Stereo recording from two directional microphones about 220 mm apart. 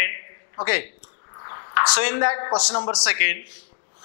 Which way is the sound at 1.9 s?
10° left (ahead or behind).